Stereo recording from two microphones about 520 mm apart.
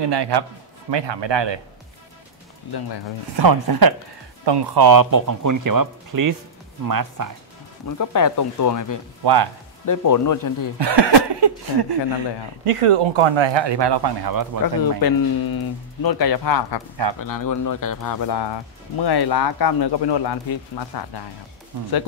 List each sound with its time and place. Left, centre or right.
0.1 s a man's voice: right
3.3 s a man's voice: right
7.8 s speech: left
9.2 s a man's voice: right
9.8 s speech: left
10.8 s a man's voice: right
12.6 s speech: right
14.8 s speech: left